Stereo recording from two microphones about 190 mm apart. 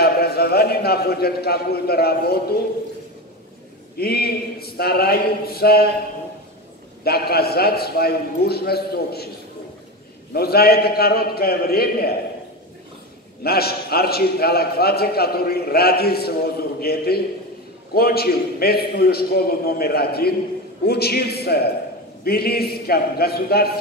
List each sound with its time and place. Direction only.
0.0 s a man's voice: 55° left (ahead or behind)
3.9 s a man's voice: 55° left (ahead or behind)
7.1 s a man's voice: 55° left (ahead or behind)
10.3 s a man's voice: 55° left (ahead or behind)
13.4 s a man's voice: 55° left (ahead or behind)